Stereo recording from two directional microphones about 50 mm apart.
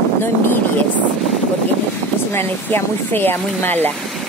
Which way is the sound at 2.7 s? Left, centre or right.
Left.